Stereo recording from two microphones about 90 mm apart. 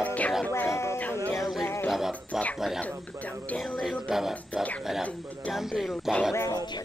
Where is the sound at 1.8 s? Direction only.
5° right (ahead or behind).